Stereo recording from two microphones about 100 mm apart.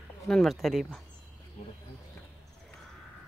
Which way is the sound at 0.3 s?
5° left (ahead or behind).